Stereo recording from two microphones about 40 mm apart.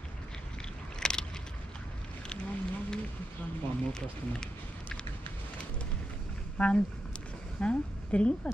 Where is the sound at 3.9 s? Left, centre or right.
Centre.